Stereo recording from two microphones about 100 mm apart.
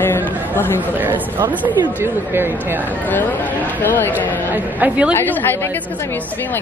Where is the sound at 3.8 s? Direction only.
20° left (ahead or behind).